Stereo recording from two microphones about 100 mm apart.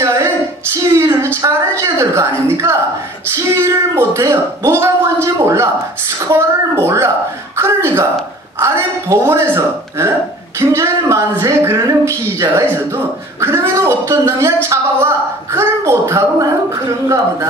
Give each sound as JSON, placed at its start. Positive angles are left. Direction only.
{"t": 0.0, "sound": "female singing", "side_deg": -30}
{"t": 0.9, "sound": "a sound", "side_deg": -30}
{"t": 3.5, "sound": "a woman's voice", "side_deg": -25}